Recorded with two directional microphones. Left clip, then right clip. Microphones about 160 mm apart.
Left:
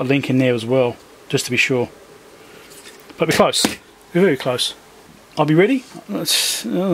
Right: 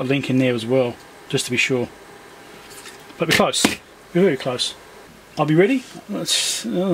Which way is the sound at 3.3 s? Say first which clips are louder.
Left 1 dB; 20° left (ahead or behind).